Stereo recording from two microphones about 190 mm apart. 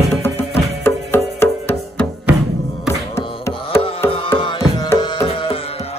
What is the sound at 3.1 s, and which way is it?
Music, 15° left (ahead or behind).